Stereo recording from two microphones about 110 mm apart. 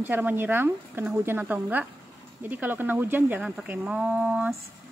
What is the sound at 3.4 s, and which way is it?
Speech, 5° right (ahead or behind).